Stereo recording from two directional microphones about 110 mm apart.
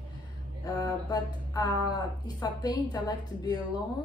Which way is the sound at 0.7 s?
40° left (ahead or behind).